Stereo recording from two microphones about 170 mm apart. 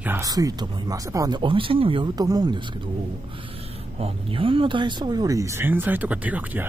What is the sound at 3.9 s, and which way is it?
Speech, 35° right (ahead or behind).